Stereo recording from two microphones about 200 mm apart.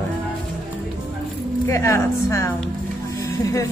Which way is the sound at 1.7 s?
15° left (ahead or behind).